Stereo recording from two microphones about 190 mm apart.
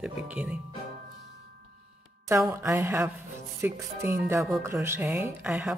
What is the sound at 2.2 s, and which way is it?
Speech, 15° right (ahead or behind).